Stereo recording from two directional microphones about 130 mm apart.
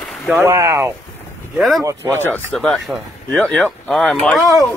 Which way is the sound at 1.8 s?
20° right (ahead or behind).